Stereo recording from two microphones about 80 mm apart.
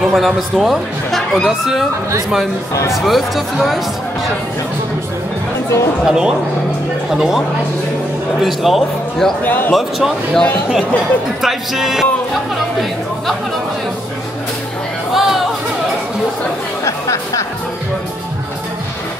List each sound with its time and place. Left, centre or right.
0.1 s speech: centre
2.9 s speech: centre
6.0 s speech: centre
9.4 s speech: left
9.8 s speech: centre
11.4 s speech: centre
15.1 s chatter: centre
16.8 s music: left